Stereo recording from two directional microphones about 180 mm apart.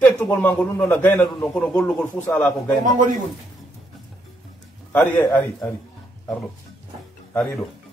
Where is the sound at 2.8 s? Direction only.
45° right (ahead or behind).